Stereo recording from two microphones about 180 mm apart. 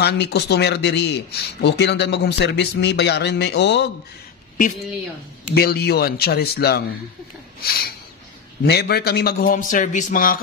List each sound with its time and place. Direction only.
0.0 s speech: 70° left (ahead or behind)
5.5 s a man's voice: 60° left (ahead or behind)